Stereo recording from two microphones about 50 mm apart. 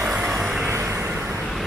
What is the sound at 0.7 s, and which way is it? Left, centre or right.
Vehicle, right.